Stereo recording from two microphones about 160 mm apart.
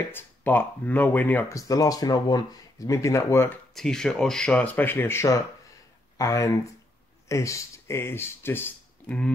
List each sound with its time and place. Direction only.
0.1 s speech: 10° left (ahead or behind)
3.7 s speech: 5° left (ahead or behind)